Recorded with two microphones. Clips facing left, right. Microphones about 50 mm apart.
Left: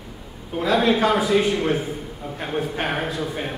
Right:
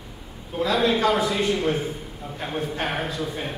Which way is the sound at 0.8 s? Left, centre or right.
Centre.